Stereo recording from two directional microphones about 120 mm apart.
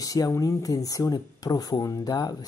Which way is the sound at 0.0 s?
30° left (ahead or behind).